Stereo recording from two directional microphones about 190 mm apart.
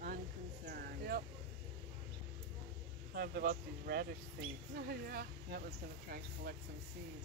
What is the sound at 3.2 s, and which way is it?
Speech, 50° right (ahead or behind).